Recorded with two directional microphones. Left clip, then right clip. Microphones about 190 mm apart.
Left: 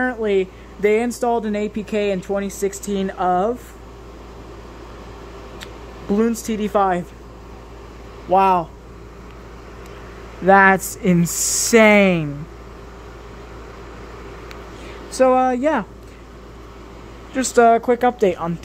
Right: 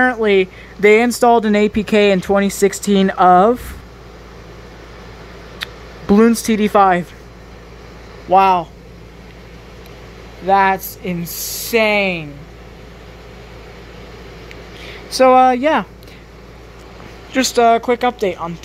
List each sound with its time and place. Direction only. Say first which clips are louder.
0.0 s speech: right 6 dB; 10° right (ahead or behind)
5.6 s speech: right 6 dB; 15° right (ahead or behind)
8.3 s speech: right 4 dB; 5° left (ahead or behind)
10.4 s speech: left 1 dB; 30° left (ahead or behind)
15.1 s speech: right 6 dB; 5° left (ahead or behind)
17.3 s speech: right 6 dB; 5° right (ahead or behind)
17.6 s speech: right 1 dB; 10° left (ahead or behind)